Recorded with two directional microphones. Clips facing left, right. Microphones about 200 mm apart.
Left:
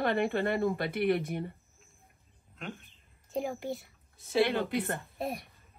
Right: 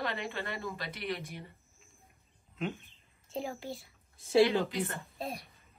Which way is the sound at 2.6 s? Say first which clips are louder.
Right 5 dB; centre (ahead or behind).